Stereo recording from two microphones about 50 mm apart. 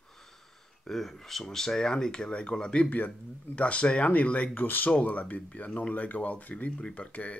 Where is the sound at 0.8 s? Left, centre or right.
Centre.